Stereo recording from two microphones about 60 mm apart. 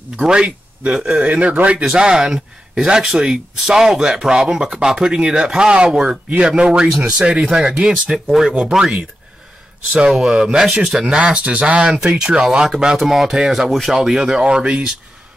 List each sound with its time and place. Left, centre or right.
0.2 s speech: centre
10.1 s speech: centre